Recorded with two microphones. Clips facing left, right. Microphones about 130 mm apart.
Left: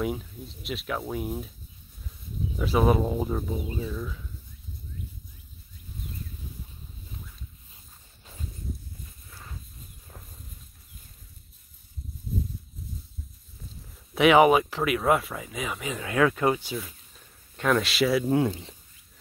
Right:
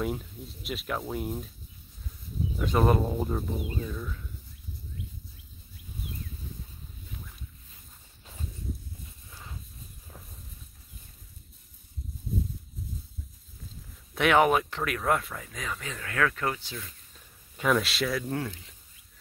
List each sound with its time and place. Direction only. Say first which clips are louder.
0.0 s speech: left 2 dB; centre (ahead or behind)
2.6 s speech: left 2 dB; 5° left (ahead or behind)
14.1 s speech: left 5 dB; 5° left (ahead or behind)
17.6 s speech: left 3 dB; centre (ahead or behind)
18.2 s speech: left 9 dB; 20° left (ahead or behind)